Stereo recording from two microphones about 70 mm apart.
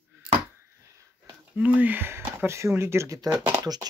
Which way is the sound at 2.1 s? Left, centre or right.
Right.